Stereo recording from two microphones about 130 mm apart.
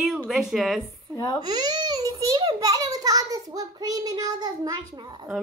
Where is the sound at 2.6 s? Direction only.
30° right (ahead or behind).